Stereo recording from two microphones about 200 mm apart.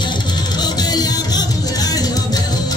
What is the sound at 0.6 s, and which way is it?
Music, 20° left (ahead or behind).